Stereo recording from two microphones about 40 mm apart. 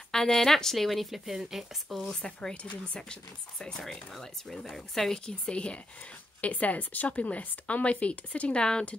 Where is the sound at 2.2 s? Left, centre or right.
Left.